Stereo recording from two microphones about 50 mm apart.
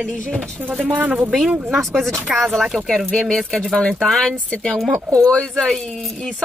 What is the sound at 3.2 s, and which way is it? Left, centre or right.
Speech, centre.